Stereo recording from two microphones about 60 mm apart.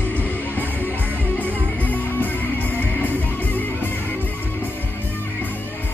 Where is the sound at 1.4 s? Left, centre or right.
Left.